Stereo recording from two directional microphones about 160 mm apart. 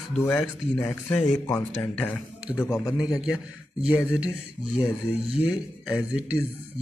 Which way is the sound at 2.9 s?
5° right (ahead or behind).